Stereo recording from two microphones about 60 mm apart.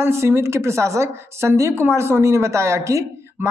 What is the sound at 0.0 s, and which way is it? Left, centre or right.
A woman's voice, right.